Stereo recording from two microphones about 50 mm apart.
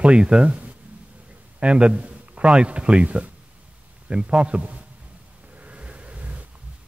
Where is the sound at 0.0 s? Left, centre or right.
Right.